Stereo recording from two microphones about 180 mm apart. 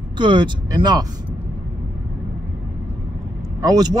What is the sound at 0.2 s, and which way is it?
Speech, 25° right (ahead or behind).